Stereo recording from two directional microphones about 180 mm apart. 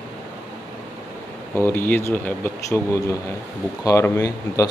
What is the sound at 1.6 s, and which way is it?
Speech, 10° left (ahead or behind).